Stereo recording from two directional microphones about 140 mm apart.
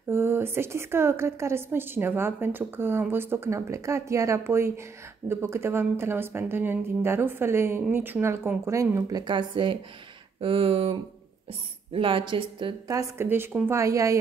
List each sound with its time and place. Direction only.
0.1 s a woman's voice: 15° right (ahead or behind); by 12.7 s 35° right (ahead or behind)
12.8 s a woman's voice: 25° right (ahead or behind)